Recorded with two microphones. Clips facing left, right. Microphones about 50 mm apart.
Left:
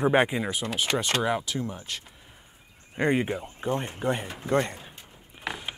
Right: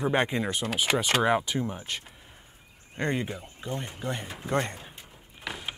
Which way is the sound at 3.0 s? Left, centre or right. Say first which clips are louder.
Left 5 dB; centre.